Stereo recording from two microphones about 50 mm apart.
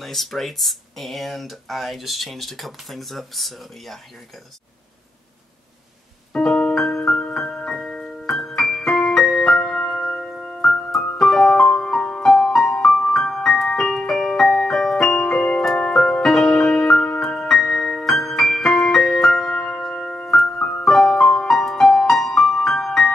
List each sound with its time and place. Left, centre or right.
0.0 s speech: centre
6.3 s piano: centre
6.8 s music: centre
7.3 s piano: centre
9.6 s music: centre